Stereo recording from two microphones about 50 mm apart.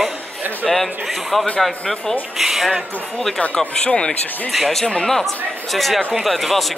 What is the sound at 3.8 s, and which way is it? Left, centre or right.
Speech, centre.